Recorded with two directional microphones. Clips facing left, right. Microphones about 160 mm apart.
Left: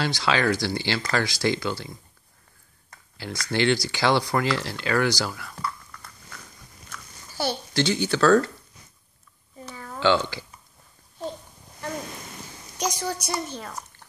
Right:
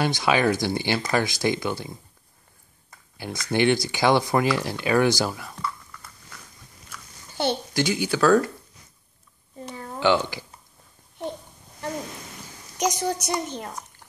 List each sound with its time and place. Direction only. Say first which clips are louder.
0.0 s a woman's voice: right 2 dB; 20° right (ahead or behind)
3.2 s speech: right 2 dB; 20° right (ahead or behind)
7.3 s speech: right 1 dB; 20° right (ahead or behind)
9.7 s a sound: even; 20° right (ahead or behind)
12.7 s a woman's voice: right 4 dB; 20° right (ahead or behind)